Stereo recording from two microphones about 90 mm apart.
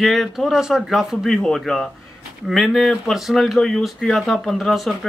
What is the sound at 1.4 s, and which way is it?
Speech, 5° left (ahead or behind).